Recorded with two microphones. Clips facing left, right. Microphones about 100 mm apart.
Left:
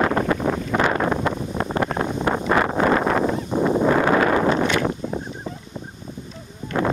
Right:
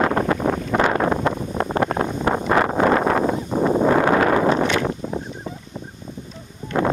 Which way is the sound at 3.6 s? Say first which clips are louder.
Right 1 dB; 30° right (ahead or behind).